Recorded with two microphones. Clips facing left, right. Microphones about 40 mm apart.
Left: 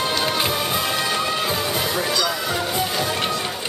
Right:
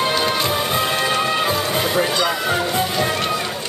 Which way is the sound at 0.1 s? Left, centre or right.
Centre.